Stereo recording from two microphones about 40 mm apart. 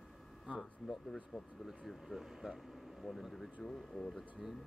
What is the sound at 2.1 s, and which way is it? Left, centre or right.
Speech, centre.